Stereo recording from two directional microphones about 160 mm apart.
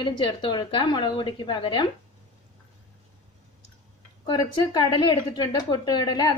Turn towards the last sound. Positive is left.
turn(degrees=25)  # may be behind; listen again after turning